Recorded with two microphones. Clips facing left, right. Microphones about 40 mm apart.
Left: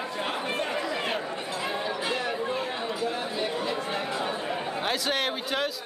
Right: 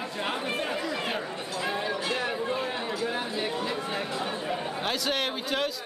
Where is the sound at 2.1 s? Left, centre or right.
Centre.